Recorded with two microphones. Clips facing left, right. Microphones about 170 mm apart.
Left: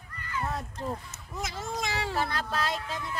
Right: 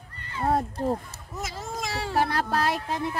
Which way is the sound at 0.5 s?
45° right (ahead or behind).